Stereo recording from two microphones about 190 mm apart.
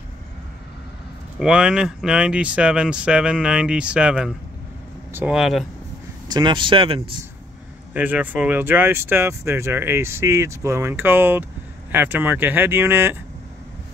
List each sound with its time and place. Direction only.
1.4 s speech: 5° right (ahead or behind)
6.3 s speech: 25° right (ahead or behind)
7.9 s speech: 10° right (ahead or behind)